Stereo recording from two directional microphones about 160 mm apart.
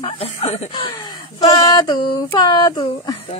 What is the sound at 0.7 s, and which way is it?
Speech, 25° left (ahead or behind).